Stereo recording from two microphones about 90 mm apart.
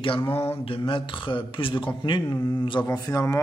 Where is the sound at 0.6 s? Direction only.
85° left; by 2.4 s 60° left (ahead or behind).